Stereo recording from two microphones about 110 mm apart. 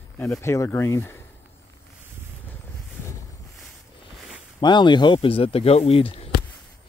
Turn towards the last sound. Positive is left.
turn(degrees=60)  # may be behind; listen again after turning